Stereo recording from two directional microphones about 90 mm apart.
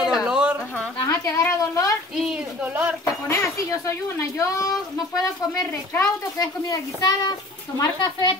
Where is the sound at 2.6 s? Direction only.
20° right (ahead or behind).